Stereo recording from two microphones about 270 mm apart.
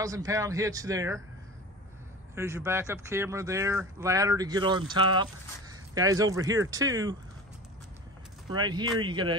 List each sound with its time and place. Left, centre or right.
0.0 s speech: centre
2.3 s speech: centre
8.5 s speech: centre